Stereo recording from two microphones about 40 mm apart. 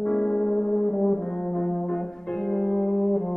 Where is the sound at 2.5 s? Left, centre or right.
Centre.